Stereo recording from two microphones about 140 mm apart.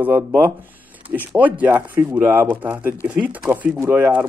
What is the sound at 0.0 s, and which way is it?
Speech, 15° right (ahead or behind).